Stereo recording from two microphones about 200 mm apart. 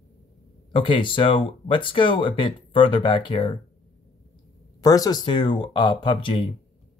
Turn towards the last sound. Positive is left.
turn(degrees=25)  # may be behind; listen again after turning